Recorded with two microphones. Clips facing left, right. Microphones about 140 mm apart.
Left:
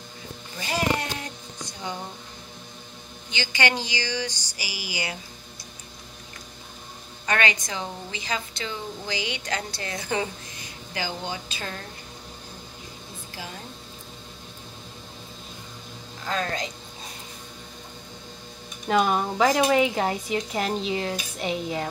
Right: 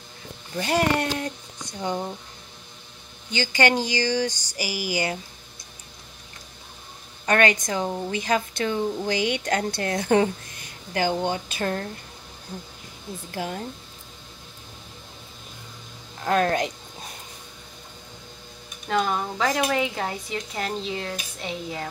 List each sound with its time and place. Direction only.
0.6 s speech: 60° right (ahead or behind)
3.3 s speech: 45° right (ahead or behind)
7.2 s speech: 50° right (ahead or behind)
13.3 s a woman's voice: 55° right (ahead or behind)
16.3 s speech: 60° right (ahead or behind)
18.9 s speech: 15° left (ahead or behind)